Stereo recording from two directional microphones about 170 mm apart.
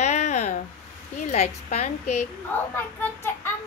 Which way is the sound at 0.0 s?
40° left (ahead or behind).